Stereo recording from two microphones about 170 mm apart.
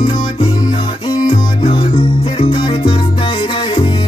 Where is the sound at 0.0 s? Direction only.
25° left (ahead or behind).